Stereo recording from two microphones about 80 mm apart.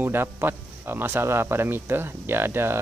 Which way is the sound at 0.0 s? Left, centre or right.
Right.